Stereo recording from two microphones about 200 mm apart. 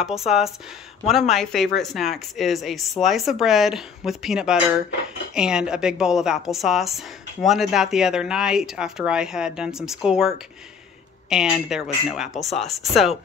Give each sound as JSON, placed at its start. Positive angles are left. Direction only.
{"t": 0.0, "sound": "speech", "side_deg": 0}